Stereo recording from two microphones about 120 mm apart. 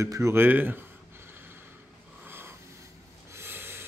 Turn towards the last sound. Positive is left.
turn(degrees=-20)  # may be behind; listen again after turning